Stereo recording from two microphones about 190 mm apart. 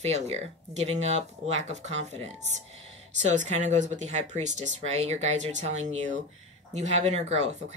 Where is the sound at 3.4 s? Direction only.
40° right (ahead or behind).